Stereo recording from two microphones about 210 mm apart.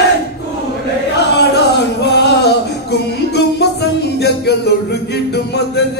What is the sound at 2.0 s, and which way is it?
Music, 55° left (ahead or behind).